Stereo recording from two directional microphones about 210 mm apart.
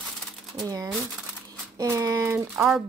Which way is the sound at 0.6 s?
15° right (ahead or behind).